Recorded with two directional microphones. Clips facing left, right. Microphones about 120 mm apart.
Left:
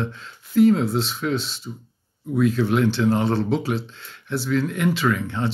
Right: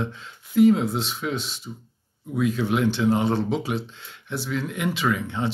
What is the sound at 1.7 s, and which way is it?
Speech, centre (ahead or behind).